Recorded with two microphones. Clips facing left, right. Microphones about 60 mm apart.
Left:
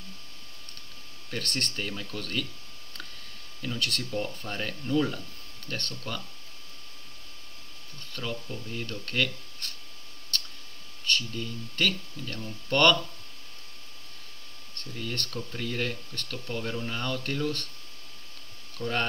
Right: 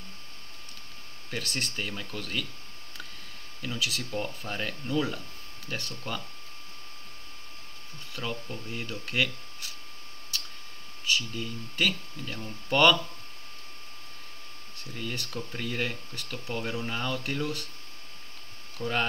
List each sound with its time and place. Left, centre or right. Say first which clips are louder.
1.3 s speech: left 1 dB; centre
3.6 s speech: left 1 dB; centre
8.1 s speech: even; centre
10.3 s clicking: left 3 dB; centre
11.1 s speech: even; centre
14.8 s speech: left 1 dB; centre
18.8 s speech: even; centre